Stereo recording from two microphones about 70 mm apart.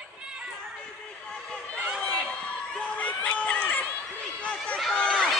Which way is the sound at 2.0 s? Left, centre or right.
Centre.